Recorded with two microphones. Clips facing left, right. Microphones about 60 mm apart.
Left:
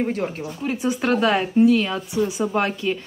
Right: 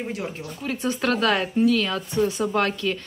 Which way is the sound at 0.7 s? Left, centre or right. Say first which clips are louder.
Left 2 dB; centre.